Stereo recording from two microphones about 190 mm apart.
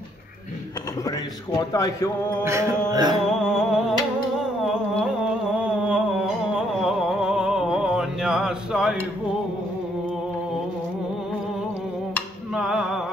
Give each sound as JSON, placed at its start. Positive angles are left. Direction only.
{"t": 1.6, "sound": "a man's voice", "side_deg": 20}
{"t": 2.4, "sound": "music", "side_deg": -15}
{"t": 3.3, "sound": "a sound", "side_deg": -5}
{"t": 4.4, "sound": "humming", "side_deg": 0}
{"t": 5.6, "sound": "a sound", "side_deg": -5}
{"t": 12.1, "sound": "music", "side_deg": 0}